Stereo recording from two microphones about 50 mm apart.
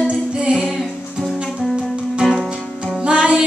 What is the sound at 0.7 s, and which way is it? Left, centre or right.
Music, centre.